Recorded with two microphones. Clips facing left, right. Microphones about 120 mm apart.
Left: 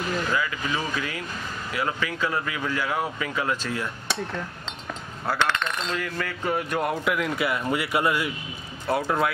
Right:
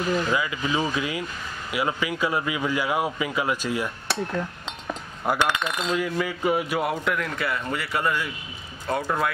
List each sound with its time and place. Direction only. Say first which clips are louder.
0.3 s speech: right 2 dB; 15° right (ahead or behind); by 9.3 s 5° left (ahead or behind)